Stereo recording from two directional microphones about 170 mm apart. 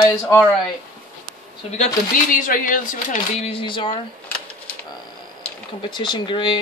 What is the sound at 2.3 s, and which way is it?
Speech, 50° left (ahead or behind).